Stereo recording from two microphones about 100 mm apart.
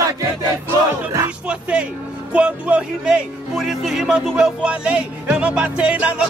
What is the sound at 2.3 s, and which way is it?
Speech, 10° right (ahead or behind).